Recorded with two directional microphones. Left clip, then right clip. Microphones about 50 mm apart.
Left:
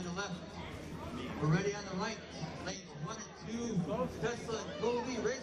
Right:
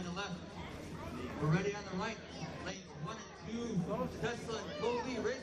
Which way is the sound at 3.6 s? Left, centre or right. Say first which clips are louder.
Left 2 dB; left.